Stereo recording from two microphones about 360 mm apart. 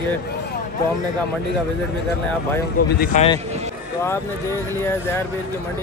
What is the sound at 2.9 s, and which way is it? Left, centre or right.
Speech, centre.